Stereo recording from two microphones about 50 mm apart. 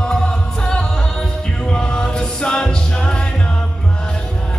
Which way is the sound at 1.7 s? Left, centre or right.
Centre.